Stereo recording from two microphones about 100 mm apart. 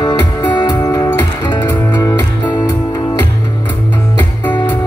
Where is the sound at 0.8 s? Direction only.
35° left (ahead or behind).